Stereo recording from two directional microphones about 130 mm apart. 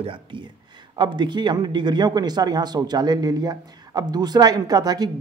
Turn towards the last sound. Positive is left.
turn(degrees=-30)  # may be behind; listen again after turning